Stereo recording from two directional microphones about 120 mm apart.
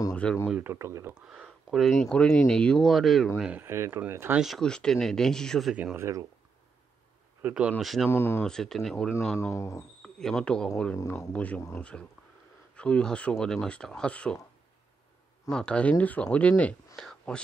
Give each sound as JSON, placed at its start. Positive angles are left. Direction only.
{"t": 0.1, "sound": "speech", "side_deg": 10}
{"t": 0.6, "sound": "speech", "side_deg": -20}
{"t": 1.1, "sound": "speech", "side_deg": -10}
{"t": 3.6, "sound": "speech", "side_deg": -20}
{"t": 4.4, "sound": "speech", "side_deg": 0}
{"t": 5.9, "sound": "speech", "side_deg": -25}
{"t": 7.4, "sound": "speech", "side_deg": -10}
{"t": 8.1, "sound": "speech", "side_deg": 20}
{"t": 8.5, "sound": "speech", "side_deg": 5}
{"t": 9.4, "sound": "speech", "side_deg": 25}
{"t": 10.0, "sound": "speech", "side_deg": 5}
{"t": 11.0, "sound": "speech", "side_deg": 20}
{"t": 11.3, "sound": "speech", "side_deg": 10}
{"t": 15.5, "sound": "speech", "side_deg": 10}